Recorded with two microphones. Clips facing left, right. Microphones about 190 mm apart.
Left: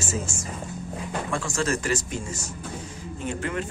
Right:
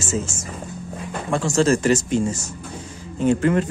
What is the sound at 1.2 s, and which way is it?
Speech, 25° right (ahead or behind).